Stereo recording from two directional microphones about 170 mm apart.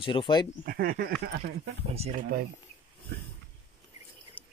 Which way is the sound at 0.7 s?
60° right (ahead or behind).